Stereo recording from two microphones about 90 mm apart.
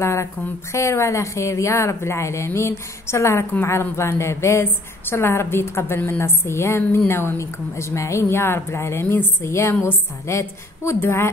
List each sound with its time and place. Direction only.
0.0 s a woman's voice: 30° left (ahead or behind)